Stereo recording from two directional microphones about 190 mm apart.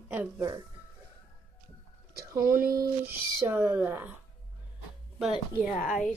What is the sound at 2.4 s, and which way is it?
Speech, 50° right (ahead or behind).